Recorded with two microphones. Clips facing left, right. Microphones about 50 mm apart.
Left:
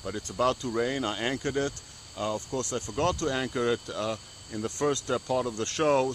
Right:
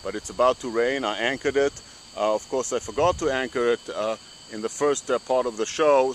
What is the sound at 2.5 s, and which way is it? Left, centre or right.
Speech, right.